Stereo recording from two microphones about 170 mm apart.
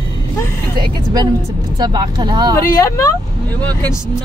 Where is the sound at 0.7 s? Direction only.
25° right (ahead or behind).